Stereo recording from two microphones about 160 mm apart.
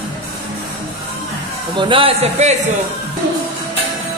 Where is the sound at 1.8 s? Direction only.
30° right (ahead or behind).